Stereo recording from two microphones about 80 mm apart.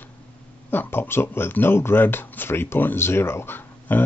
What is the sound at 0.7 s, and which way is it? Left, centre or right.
Speech, left.